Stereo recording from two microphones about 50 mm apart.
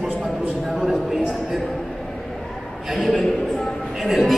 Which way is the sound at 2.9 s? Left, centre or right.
Centre.